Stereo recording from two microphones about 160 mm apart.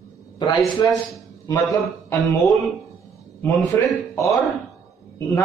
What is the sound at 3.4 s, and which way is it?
A man's voice, 15° left (ahead or behind).